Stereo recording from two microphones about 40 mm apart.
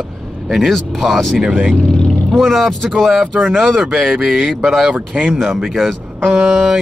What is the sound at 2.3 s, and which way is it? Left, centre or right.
Speech, centre.